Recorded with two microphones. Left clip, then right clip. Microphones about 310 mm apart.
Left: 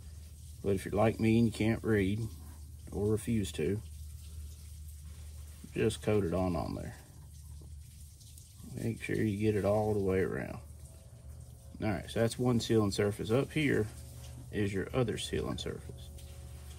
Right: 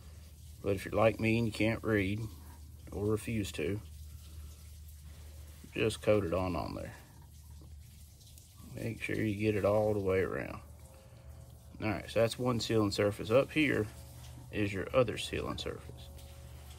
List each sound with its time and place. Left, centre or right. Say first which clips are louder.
0.7 s speech: right 1 dB; right
3.2 s speech: left 2 dB; right
5.7 s speech: right 2 dB; right
8.7 s speech: left 1 dB; right
11.8 s speech: right 2 dB; right